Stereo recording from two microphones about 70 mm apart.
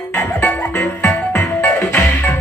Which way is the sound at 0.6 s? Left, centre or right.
Left.